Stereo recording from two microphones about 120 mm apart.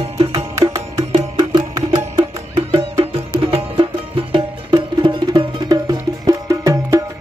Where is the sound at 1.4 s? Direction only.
40° right (ahead or behind).